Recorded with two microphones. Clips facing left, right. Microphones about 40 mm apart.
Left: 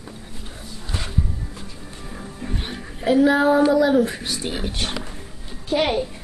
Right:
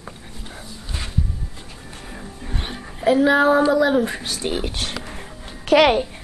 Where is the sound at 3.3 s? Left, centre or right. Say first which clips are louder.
Right 1 dB; right.